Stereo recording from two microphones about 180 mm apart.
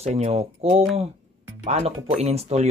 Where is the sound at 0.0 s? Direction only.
35° right (ahead or behind).